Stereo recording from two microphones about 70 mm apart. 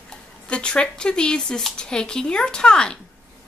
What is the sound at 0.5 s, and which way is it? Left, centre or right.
Speech, centre.